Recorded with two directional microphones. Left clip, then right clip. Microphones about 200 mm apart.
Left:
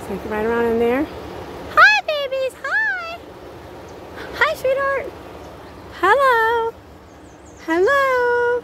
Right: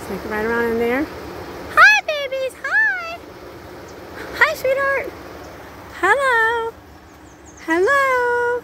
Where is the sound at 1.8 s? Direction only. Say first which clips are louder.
Right 1 dB; 5° left (ahead or behind).